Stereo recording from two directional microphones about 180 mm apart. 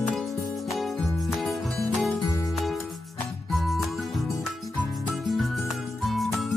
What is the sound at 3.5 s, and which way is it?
Music, centre (ahead or behind).